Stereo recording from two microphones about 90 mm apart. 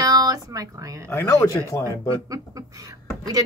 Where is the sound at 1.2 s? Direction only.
35° left (ahead or behind).